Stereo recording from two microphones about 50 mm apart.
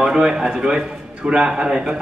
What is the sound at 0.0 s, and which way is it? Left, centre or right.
A man's voice, centre.